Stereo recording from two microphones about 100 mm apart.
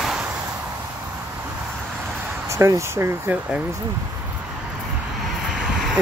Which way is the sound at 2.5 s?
30° right (ahead or behind).